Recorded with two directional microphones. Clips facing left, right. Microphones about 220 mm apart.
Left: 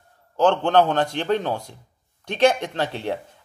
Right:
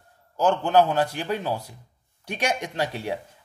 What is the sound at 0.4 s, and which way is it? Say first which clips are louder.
A man's voice: left 2 dB; 10° right (ahead or behind).